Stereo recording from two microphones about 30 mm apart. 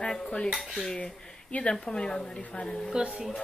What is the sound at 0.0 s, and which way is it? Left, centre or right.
Cutlery, left.